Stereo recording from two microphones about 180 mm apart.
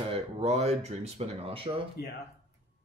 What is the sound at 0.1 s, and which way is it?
Speech, 35° right (ahead or behind).